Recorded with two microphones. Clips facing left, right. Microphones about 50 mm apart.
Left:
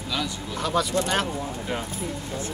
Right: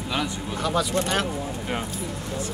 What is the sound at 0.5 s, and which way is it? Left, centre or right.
Speech, centre.